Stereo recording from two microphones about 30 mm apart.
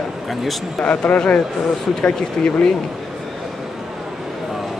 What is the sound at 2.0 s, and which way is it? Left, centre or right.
Speech, left.